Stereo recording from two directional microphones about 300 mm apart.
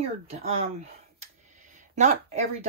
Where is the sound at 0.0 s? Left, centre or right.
Right.